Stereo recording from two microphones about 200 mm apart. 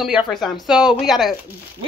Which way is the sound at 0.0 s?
Centre (ahead or behind).